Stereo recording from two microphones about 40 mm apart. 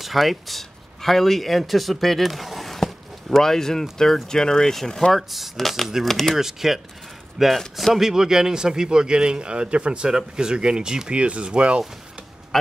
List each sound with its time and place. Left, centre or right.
0.0 s speech: centre
5.1 s speech: centre
6.3 s speech: centre
7.5 s speech: centre
7.9 s speech: centre
11.1 s speech: right